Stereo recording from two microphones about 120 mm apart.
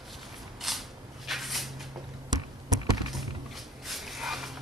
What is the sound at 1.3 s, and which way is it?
Cupboard open or close, centre (ahead or behind).